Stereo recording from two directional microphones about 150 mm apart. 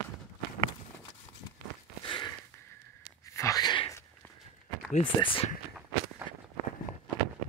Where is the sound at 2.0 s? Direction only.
35° left (ahead or behind).